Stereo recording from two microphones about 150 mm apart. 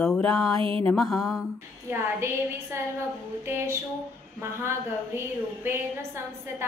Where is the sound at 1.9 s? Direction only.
15° right (ahead or behind).